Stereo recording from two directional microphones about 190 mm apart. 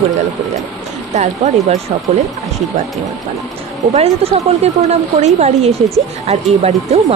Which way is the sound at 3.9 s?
30° right (ahead or behind).